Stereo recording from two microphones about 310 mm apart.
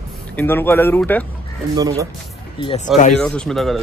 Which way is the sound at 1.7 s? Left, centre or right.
Centre.